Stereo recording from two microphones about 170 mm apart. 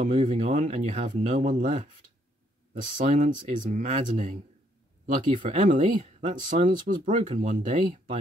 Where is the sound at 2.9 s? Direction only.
45° right (ahead or behind).